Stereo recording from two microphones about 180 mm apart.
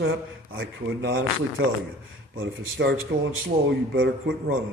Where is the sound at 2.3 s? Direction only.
75° right (ahead or behind).